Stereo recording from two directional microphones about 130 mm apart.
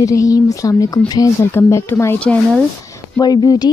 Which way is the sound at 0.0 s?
25° left (ahead or behind).